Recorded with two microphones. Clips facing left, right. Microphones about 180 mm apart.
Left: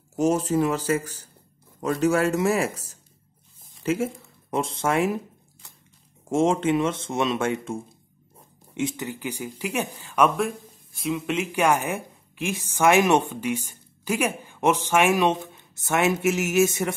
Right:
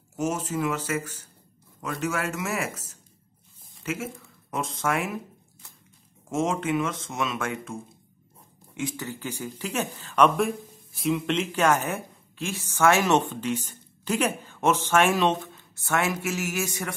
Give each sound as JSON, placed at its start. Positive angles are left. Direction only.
{"t": 0.1, "sound": "speech", "side_deg": 35}
{"t": 6.3, "sound": "speech", "side_deg": 30}
{"t": 8.7, "sound": "speech", "side_deg": 20}